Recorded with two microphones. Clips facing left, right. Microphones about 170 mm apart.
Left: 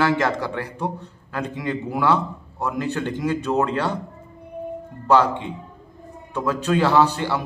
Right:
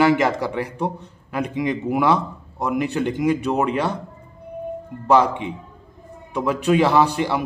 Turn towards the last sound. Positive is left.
turn(degrees=-15)  # may be behind; listen again after turning